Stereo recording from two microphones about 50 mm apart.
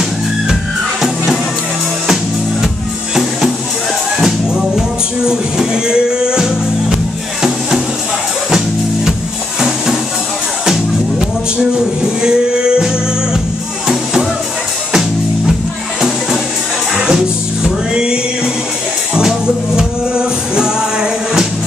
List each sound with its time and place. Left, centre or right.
1.0 s music: centre
4.2 s music: centre
8.5 s music: centre
10.6 s music: centre
14.9 s music: centre
16.9 s music: centre